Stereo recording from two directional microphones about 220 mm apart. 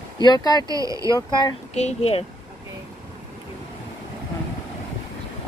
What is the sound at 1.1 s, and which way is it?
Speech, 20° left (ahead or behind).